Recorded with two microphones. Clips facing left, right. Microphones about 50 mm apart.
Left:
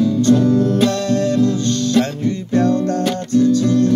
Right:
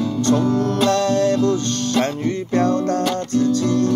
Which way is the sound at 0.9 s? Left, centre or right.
Right.